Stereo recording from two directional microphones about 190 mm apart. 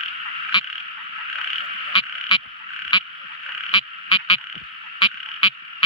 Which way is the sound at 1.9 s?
25° left (ahead or behind).